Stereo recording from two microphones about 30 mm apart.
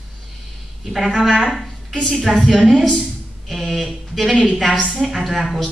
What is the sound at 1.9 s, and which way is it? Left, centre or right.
Speech, left.